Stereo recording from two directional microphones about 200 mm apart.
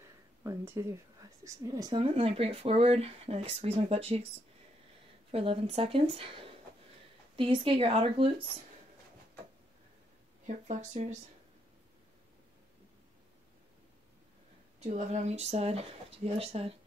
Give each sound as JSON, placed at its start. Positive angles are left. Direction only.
{"t": 0.4, "sound": "speech", "side_deg": -15}
{"t": 5.3, "sound": "speech", "side_deg": -30}
{"t": 10.4, "sound": "speech", "side_deg": -35}
{"t": 14.8, "sound": "speech", "side_deg": -35}